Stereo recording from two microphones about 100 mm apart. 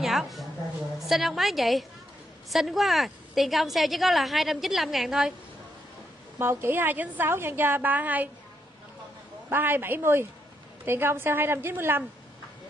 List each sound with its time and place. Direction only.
0.0 s a woman's voice: centre (ahead or behind)
6.3 s a woman's voice: 25° right (ahead or behind)
9.5 s a woman's voice: 20° right (ahead or behind)